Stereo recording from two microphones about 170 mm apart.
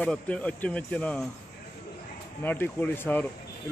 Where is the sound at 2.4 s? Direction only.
10° left (ahead or behind).